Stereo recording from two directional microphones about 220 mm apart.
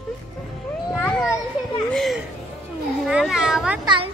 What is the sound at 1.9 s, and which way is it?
Speech, centre (ahead or behind).